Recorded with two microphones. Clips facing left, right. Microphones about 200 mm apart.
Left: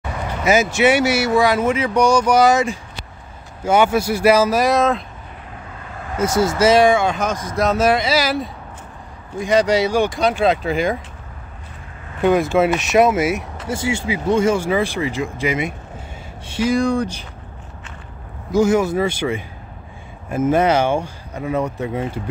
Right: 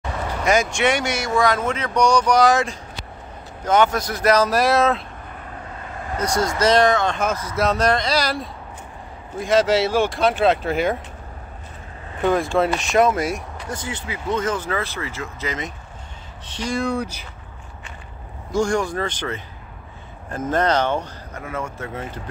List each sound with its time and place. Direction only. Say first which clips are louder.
0.4 s speech: left 4 dB; 5° left (ahead or behind)
6.1 s speech: left 4 dB; 5° left (ahead or behind)
12.2 s speech: left 4 dB; centre (ahead or behind)
18.5 s speech: left 5 dB; 5° left (ahead or behind)